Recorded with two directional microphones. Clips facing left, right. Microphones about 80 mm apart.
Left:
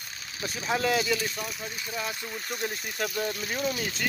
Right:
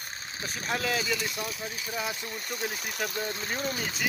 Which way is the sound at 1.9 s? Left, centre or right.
Centre.